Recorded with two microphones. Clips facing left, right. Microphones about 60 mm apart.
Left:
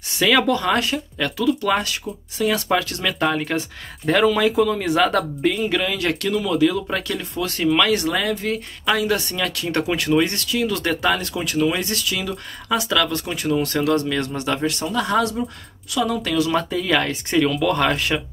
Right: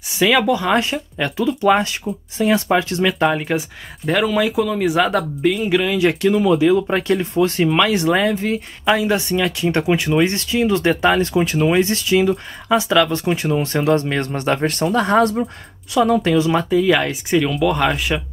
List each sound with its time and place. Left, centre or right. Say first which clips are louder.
0.2 s speech: right 2 dB; centre
3.2 s speech: right 3 dB; centre; by 16.6 s right
16.6 s speech: right 5 dB; centre